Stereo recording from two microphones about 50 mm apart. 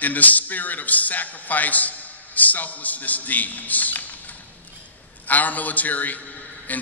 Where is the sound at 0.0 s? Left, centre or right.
Left.